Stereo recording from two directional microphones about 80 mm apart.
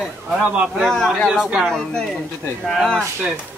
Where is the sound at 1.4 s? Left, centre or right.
Centre.